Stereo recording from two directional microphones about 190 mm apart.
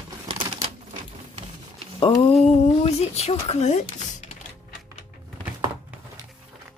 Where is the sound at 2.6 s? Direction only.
35° left (ahead or behind).